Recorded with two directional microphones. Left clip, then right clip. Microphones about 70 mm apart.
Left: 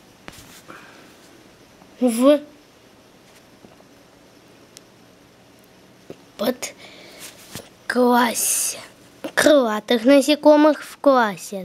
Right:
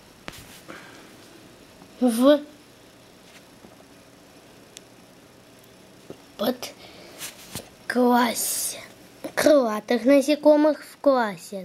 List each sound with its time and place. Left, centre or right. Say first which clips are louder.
0.2 s a sound: right 1 dB; centre
2.0 s a woman's voice: left 2 dB; left
7.5 s whispering: left 4 dB; left
9.2 s a woman's voice: left 3 dB; left